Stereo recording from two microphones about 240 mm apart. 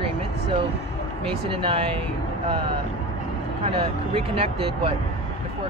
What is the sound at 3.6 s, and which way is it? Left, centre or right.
Speech, right.